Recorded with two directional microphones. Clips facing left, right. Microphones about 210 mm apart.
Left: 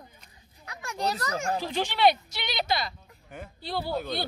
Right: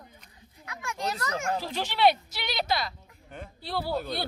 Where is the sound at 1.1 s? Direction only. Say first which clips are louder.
Left 1 dB; 35° left (ahead or behind).